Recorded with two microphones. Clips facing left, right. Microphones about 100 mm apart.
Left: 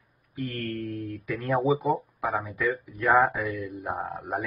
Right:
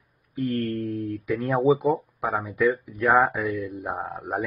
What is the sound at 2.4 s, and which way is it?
Speech, centre (ahead or behind).